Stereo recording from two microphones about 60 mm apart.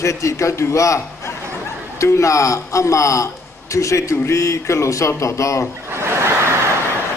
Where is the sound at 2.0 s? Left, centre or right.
Left.